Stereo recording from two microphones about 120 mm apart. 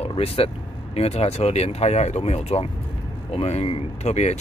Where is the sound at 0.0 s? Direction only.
55° left (ahead or behind).